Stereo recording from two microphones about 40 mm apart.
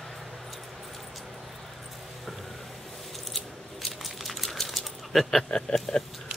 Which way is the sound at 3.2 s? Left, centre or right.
Centre.